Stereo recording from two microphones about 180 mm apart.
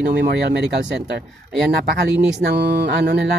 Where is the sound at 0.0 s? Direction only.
50° right (ahead or behind).